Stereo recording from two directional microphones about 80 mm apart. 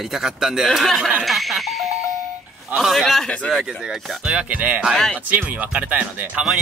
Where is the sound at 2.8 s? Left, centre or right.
Centre.